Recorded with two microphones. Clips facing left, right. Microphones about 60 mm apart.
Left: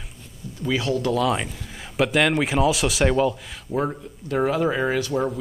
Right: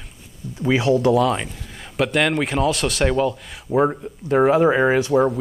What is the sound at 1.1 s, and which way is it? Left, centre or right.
A man's voice, centre.